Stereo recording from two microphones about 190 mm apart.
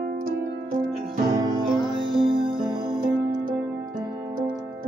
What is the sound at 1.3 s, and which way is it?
Music, 20° right (ahead or behind).